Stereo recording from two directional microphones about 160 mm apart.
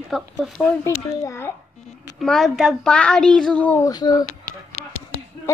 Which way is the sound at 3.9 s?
25° left (ahead or behind).